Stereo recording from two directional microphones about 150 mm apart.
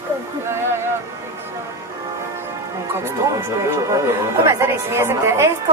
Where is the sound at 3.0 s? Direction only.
20° right (ahead or behind).